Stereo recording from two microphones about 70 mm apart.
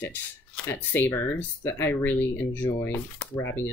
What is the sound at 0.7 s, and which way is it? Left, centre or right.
Speech, left.